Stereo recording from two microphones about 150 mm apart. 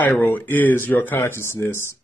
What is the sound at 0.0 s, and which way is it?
Speech, 10° left (ahead or behind).